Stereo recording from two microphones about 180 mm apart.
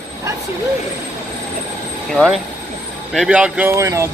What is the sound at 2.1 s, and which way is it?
A man's voice, centre (ahead or behind).